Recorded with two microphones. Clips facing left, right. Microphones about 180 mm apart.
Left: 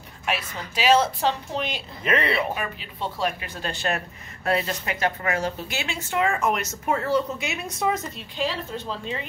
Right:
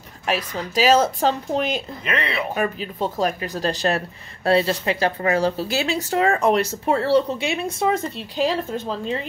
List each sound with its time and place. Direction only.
0.3 s speech: 40° right (ahead or behind)
2.0 s speech: 5° left (ahead or behind)
2.5 s speech: 45° right (ahead or behind)
8.5 s speech: 40° right (ahead or behind)